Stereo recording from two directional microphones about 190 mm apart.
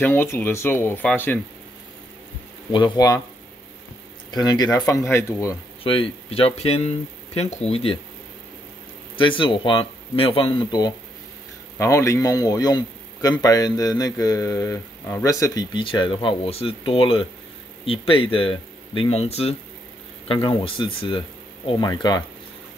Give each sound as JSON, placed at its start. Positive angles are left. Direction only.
{"t": 0.0, "sound": "speech", "side_deg": 10}
{"t": 2.7, "sound": "a man's voice", "side_deg": 20}
{"t": 4.3, "sound": "speech", "side_deg": 20}
{"t": 5.9, "sound": "speech", "side_deg": 30}
{"t": 9.1, "sound": "a man's voice", "side_deg": 25}